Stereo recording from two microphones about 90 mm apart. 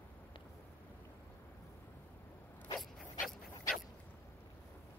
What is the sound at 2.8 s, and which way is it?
Dog, centre (ahead or behind).